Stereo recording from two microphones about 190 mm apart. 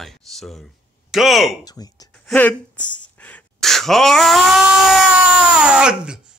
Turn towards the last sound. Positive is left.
turn(degrees=-5)  # may be behind; listen again after turning